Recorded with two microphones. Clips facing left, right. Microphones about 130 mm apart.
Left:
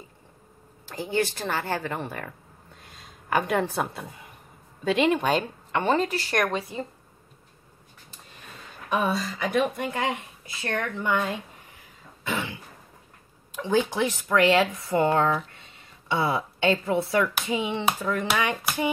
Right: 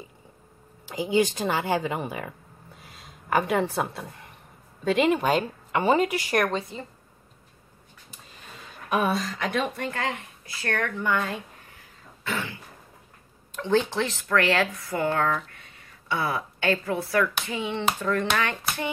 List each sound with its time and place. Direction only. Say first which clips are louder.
0.8 s speech: right 3 dB; 10° right (ahead or behind)
6.7 s speech: left 4 dB; 15° left (ahead or behind)
8.8 s speech: right 1 dB; 5° right (ahead or behind); by 11.3 s 20° left (ahead or behind)
12.2 s throat clearing: left 1 dB; 15° left (ahead or behind)
13.5 s speech: even; 10° left (ahead or behind); by 15.3 s 25° left (ahead or behind)
15.5 s a sound: even; 25° left (ahead or behind)
17.5 s speech: left 2 dB; 15° left (ahead or behind)